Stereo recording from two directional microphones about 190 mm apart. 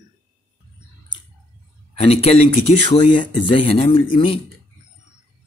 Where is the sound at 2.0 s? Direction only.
30° left (ahead or behind).